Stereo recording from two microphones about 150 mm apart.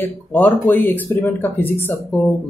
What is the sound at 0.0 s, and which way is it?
Speech, 15° left (ahead or behind).